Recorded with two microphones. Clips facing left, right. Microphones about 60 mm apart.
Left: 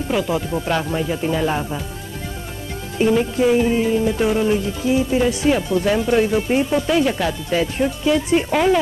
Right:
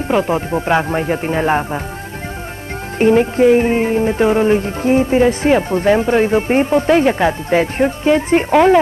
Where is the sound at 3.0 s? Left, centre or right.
Right.